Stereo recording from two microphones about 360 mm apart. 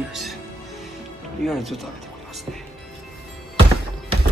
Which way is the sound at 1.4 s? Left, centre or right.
Centre.